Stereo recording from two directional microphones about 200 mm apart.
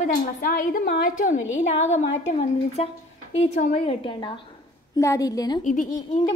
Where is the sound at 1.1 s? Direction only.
40° left (ahead or behind); by 5.6 s 20° left (ahead or behind).